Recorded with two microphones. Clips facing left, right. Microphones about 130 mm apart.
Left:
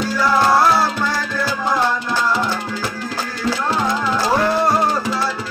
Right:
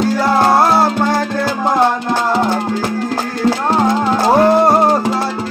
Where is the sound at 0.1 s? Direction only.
55° right (ahead or behind).